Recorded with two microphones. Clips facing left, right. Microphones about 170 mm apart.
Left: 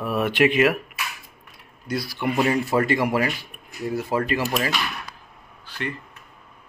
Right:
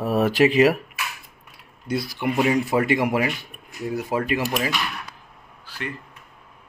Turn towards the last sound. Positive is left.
turn(degrees=-5)  # may be behind; listen again after turning